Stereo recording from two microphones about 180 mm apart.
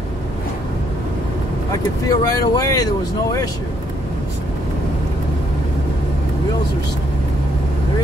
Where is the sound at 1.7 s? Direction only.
20° left (ahead or behind).